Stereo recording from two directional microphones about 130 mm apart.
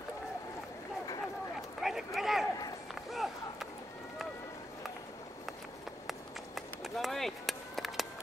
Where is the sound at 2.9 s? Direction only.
Centre (ahead or behind).